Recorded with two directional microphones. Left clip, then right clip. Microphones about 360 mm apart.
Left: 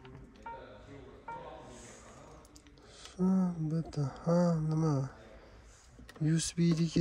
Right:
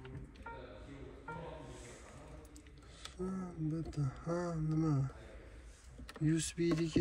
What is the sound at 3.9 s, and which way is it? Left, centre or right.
Speech, centre.